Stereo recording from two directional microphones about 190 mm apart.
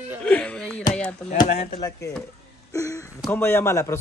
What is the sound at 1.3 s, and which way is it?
Speech, 40° left (ahead or behind).